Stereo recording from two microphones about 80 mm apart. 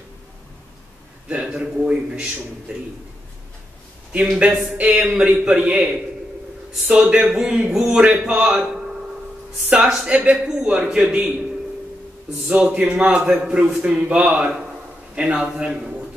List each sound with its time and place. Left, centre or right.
1.3 s a man's voice: centre
4.4 s a man's voice: centre
12.4 s a man's voice: centre